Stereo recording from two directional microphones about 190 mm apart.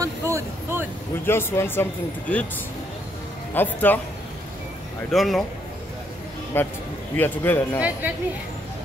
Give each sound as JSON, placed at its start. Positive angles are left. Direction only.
{"t": 0.0, "sound": "a sound", "side_deg": -15}
{"t": 1.2, "sound": "speech", "side_deg": 10}
{"t": 3.5, "sound": "speech", "side_deg": 10}
{"t": 5.1, "sound": "a man's voice", "side_deg": 0}
{"t": 6.5, "sound": "speech", "side_deg": 10}